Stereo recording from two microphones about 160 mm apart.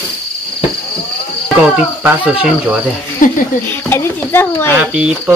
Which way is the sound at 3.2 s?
55° left (ahead or behind).